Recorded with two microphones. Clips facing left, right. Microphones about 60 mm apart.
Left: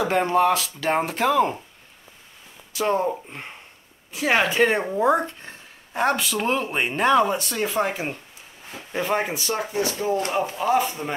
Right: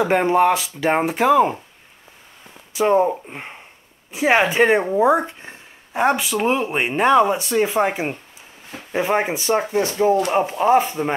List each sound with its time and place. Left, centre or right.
0.0 s speech: right
2.7 s speech: centre